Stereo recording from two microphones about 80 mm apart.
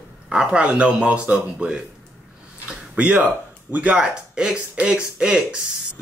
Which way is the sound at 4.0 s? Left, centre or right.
Centre.